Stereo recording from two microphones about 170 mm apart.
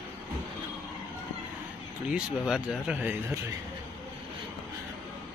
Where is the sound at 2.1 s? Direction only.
5° right (ahead or behind).